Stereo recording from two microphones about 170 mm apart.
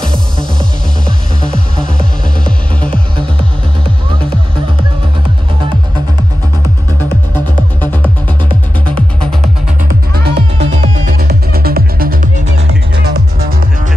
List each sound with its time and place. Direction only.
2.8 s music: 5° left (ahead or behind)
7.3 s music: 10° left (ahead or behind)
9.8 s music: 65° right (ahead or behind)